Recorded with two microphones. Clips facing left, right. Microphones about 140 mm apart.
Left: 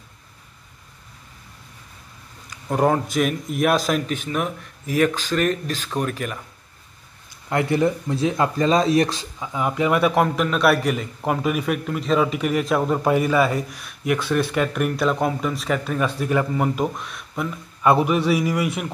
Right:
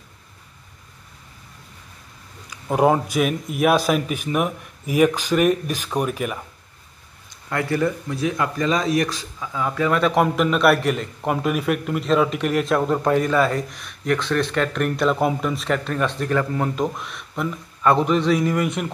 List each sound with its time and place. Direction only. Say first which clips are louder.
2.7 s speech: right 2 dB; 10° right (ahead or behind)
7.4 s speech: left 2 dB; 20° left (ahead or behind)
10.1 s a man's voice: right 1 dB; centre (ahead or behind)